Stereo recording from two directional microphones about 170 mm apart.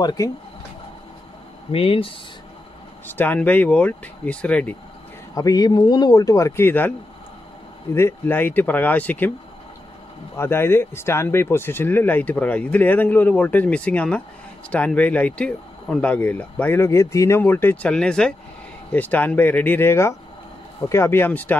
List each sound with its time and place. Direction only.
0.0 s speech: 25° left (ahead or behind)
1.7 s speech: 35° left (ahead or behind)
3.1 s speech: 10° left (ahead or behind)
5.3 s speech: 20° left (ahead or behind)
7.9 s speech: 15° left (ahead or behind)
10.3 s speech: 15° left (ahead or behind)